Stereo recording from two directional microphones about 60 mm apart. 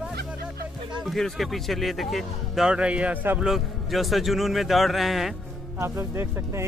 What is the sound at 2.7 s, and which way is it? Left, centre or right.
Speech, centre.